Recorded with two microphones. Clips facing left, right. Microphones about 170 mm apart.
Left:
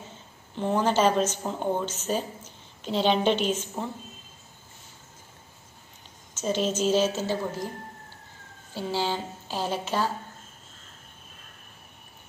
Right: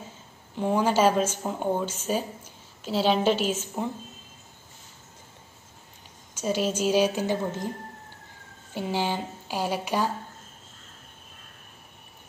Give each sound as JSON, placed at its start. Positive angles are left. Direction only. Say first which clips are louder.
{"t": 0.6, "sound": "a woman's voice", "louder": "right 1 dB", "side_deg": -10}
{"t": 6.3, "sound": "a woman's voice", "louder": "even", "side_deg": -10}
{"t": 8.7, "sound": "a woman's voice", "louder": "right 1 dB", "side_deg": -15}